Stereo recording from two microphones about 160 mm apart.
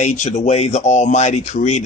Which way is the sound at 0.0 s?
50° left (ahead or behind).